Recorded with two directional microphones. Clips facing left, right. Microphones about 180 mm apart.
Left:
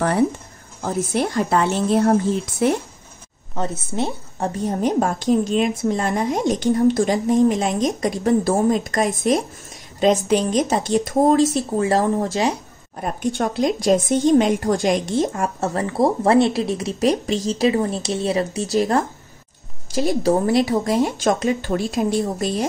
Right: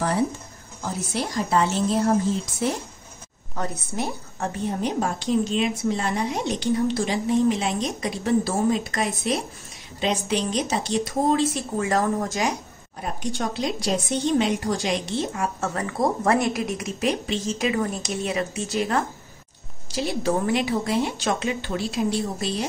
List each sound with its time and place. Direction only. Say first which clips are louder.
0.8 s a woman's voice: left 7 dB; 50° left (ahead or behind)
3.5 s a woman's voice: left 4 dB; 25° left (ahead or behind)
4.6 s a woman's voice: left 6 dB; 45° left (ahead or behind); by 12.5 s 30° left (ahead or behind)
13.0 s a woman's voice: left 6 dB; 55° left (ahead or behind)
15.7 s a woman's voice: left 7 dB; 30° left (ahead or behind); by 22.7 s 45° left (ahead or behind)